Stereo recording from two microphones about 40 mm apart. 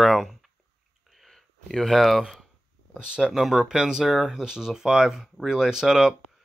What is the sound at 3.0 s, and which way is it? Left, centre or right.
Speech, centre.